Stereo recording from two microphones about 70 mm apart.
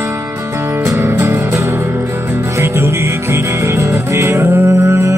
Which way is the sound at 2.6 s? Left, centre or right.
Right.